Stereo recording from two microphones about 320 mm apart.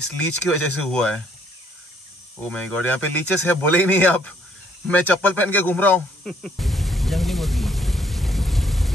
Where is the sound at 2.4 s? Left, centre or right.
Centre.